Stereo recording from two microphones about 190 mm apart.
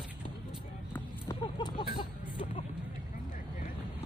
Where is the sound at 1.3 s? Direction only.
25° left (ahead or behind).